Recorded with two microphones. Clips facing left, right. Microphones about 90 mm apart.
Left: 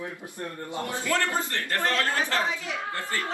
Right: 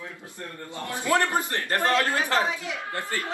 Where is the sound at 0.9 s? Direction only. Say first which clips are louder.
Right 4 dB; 20° right (ahead or behind).